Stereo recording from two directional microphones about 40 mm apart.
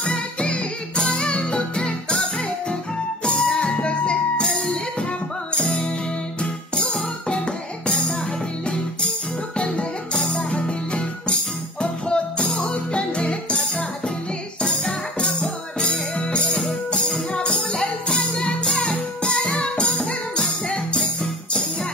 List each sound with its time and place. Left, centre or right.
0.4 s music: left
7.2 s music: left
9.6 s music: left